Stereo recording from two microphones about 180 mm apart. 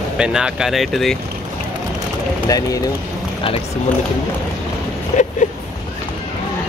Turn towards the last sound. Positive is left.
turn(degrees=45)  # may be behind; listen again after turning